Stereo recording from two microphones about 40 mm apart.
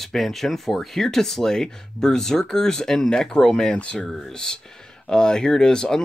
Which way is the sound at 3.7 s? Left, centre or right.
Left.